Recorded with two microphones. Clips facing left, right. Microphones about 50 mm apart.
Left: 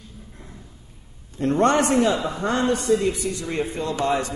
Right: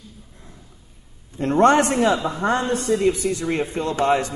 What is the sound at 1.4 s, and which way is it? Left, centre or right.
A man's voice, right.